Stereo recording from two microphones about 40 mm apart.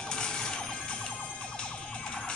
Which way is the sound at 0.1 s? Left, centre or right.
Left.